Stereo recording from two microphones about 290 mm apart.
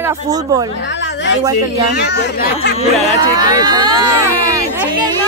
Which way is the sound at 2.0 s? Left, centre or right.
Left.